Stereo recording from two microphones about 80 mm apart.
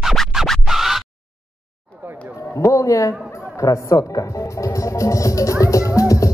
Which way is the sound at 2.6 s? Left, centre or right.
Left.